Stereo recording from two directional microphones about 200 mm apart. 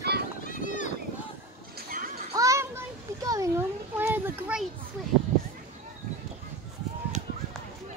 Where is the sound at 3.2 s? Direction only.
15° right (ahead or behind).